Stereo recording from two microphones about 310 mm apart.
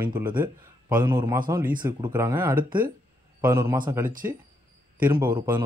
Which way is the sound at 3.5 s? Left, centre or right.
Centre.